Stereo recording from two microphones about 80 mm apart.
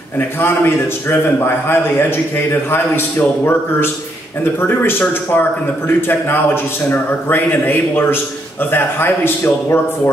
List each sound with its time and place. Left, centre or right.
0.4 s a man's voice: left